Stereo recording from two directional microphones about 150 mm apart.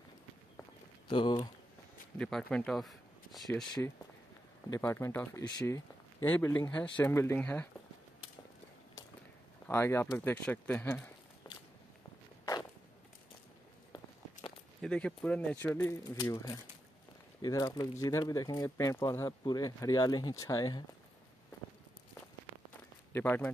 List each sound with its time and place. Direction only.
1.0 s a sound: 35° left (ahead or behind)
2.1 s speech: 5° left (ahead or behind)
3.8 s speech: 10° left (ahead or behind)
6.2 s speech: 10° left (ahead or behind)
9.7 s speech: 15° left (ahead or behind)
11.4 s a sound: 30° left (ahead or behind)
14.8 s speech: 5° left (ahead or behind); by 20.8 s 25° left (ahead or behind)
23.1 s speech: 15° left (ahead or behind)